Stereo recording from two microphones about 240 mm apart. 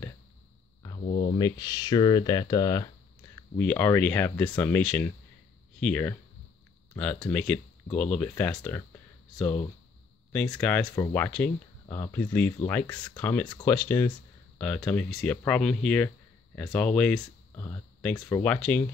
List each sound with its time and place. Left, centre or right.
1.0 s a sound: left
1.4 s speech: centre
10.6 s speech: centre
13.5 s speech: centre
13.7 s speech: centre